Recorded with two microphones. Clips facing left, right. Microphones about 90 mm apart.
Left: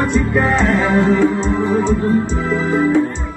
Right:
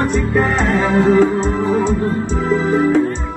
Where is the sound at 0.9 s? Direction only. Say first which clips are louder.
Right 3 dB; 35° right (ahead or behind).